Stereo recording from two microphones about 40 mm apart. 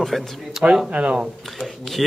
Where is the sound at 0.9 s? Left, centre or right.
Right.